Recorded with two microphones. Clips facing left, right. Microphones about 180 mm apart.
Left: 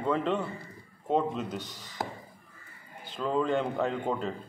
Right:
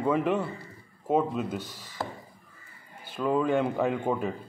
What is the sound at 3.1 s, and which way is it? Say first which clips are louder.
A man's voice: right 3 dB; 10° right (ahead or behind).